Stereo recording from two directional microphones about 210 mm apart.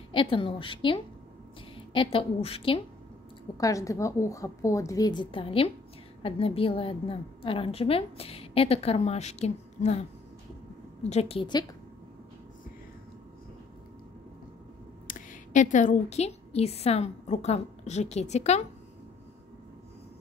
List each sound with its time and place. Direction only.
0.1 s a woman's voice: 25° left (ahead or behind)
3.5 s a woman's voice: 15° left (ahead or behind); by 9.9 s 30° left (ahead or behind)
11.1 s a woman's voice: 30° left (ahead or behind)
15.0 s a woman's voice: 35° left (ahead or behind)